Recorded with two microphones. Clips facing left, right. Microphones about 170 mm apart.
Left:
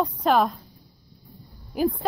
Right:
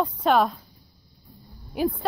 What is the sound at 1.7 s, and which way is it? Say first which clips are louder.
Speech: left 1 dB; centre (ahead or behind).